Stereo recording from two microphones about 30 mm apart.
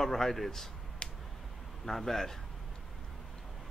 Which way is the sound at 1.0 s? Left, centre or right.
Left.